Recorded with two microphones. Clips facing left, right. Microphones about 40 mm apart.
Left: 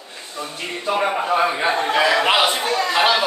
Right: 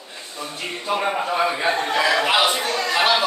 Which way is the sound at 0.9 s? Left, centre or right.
Centre.